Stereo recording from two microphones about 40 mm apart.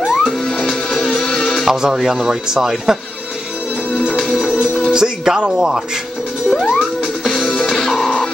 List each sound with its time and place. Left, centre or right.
0.2 s music: centre
1.7 s a man's voice: centre
4.4 s music: centre
6.7 s music: centre